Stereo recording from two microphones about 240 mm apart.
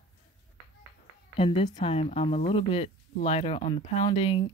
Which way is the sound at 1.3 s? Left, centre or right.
Left.